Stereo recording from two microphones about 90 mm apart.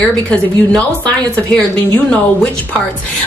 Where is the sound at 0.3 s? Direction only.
15° left (ahead or behind).